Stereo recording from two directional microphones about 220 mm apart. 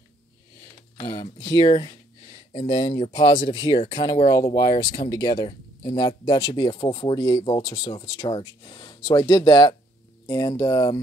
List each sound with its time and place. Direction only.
0.9 s speech: 20° left (ahead or behind)